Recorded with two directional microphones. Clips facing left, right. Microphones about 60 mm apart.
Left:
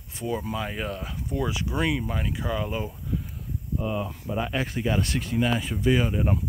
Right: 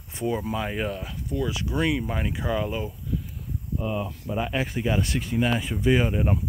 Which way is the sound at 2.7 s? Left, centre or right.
Centre.